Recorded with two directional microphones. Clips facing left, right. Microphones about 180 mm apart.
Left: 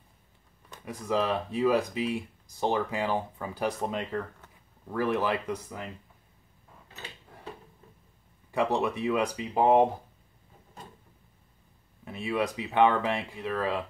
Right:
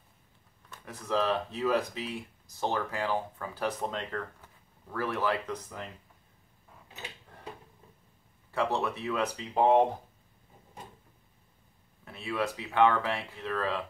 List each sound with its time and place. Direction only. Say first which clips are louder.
0.7 s speech: left 3 dB; 15° left (ahead or behind)
8.5 s speech: left 3 dB; 15° left (ahead or behind)
12.0 s speech: left 3 dB; 15° left (ahead or behind)